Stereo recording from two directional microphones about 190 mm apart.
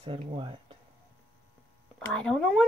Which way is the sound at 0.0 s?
30° right (ahead or behind).